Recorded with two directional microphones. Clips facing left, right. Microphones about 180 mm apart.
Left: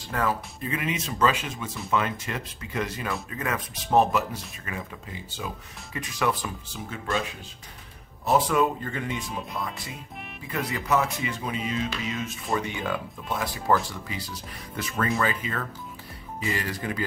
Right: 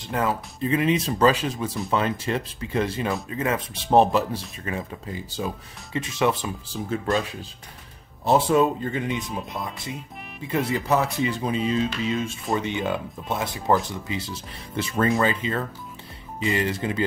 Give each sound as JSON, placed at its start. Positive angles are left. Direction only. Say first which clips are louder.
{"t": 0.1, "sound": "speech", "louder": "right 2 dB", "side_deg": -20}
{"t": 8.3, "sound": "speech", "louder": "right 3 dB", "side_deg": -25}
{"t": 10.5, "sound": "speech", "louder": "right 3 dB", "side_deg": -30}